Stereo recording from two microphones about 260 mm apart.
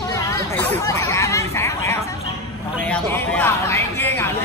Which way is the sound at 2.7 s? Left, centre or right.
Centre.